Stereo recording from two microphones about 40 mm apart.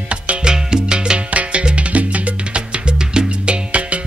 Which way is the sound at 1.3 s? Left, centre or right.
Right.